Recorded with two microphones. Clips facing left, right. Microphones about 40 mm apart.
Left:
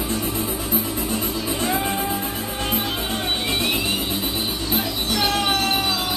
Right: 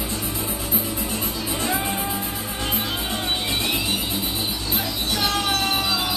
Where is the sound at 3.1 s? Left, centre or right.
Centre.